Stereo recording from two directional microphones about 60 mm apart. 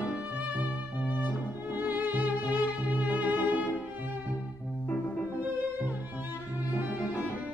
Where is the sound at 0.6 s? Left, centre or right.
Right.